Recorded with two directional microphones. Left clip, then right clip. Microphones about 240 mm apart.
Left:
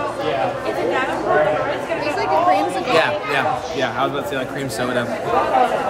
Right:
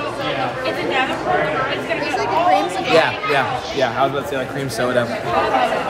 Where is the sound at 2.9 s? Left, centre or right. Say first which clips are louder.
Right 3 dB; centre.